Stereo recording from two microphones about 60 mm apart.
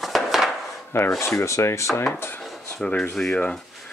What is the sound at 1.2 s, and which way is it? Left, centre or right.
Speech, left.